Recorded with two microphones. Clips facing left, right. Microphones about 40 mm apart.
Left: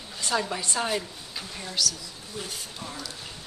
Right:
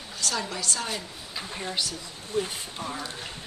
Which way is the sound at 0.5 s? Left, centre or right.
Left.